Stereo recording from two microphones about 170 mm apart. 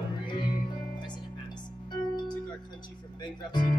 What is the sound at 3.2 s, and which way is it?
Speech, 25° left (ahead or behind).